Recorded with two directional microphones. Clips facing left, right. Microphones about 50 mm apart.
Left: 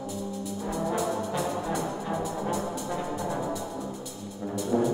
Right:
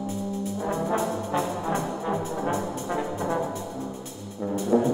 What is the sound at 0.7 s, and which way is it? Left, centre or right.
Brass instrument, right.